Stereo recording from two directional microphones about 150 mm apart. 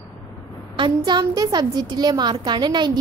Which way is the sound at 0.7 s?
30° right (ahead or behind).